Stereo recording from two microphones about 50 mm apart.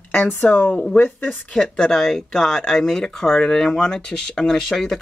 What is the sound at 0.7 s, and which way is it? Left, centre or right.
Speech, centre.